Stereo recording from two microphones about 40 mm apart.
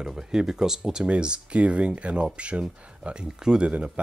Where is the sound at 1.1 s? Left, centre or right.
Right.